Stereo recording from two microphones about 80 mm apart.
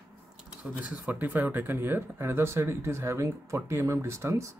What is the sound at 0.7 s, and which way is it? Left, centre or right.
Speech, centre.